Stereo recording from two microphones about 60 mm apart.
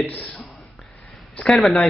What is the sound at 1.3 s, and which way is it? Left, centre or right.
Speech, centre.